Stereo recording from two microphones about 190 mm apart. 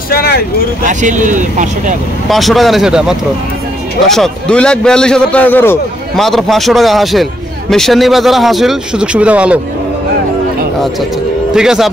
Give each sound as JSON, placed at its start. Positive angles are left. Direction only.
{"t": 0.1, "sound": "vehicle", "side_deg": 55}
{"t": 0.8, "sound": "speech", "side_deg": -40}
{"t": 2.2, "sound": "a man's voice", "side_deg": 0}
{"t": 11.5, "sound": "a man's voice", "side_deg": -5}